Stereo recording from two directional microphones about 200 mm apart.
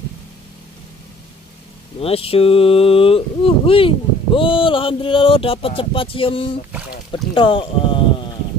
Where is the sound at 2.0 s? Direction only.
30° left (ahead or behind).